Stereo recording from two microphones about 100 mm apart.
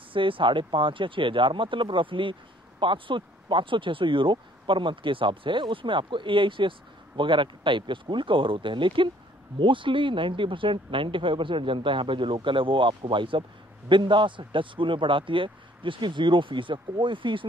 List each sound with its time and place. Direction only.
0.1 s speech: 60° right (ahead or behind)